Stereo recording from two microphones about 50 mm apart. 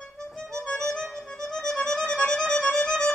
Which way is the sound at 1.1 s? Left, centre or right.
Centre.